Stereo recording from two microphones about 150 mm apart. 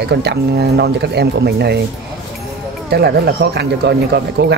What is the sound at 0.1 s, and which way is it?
Speech, 90° right.